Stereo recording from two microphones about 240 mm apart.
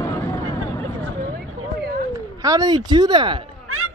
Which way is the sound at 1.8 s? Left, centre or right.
Right.